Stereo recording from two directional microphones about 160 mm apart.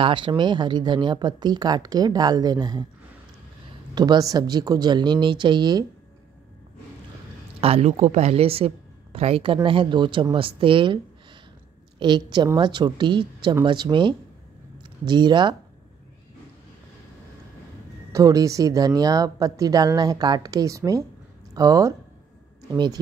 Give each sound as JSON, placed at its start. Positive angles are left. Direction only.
{"t": 0.0, "sound": "speech", "side_deg": -30}
{"t": 3.9, "sound": "speech", "side_deg": -25}
{"t": 7.6, "sound": "a woman's voice", "side_deg": -40}
{"t": 12.0, "sound": "speech", "side_deg": -30}
{"t": 18.1, "sound": "speech", "side_deg": -20}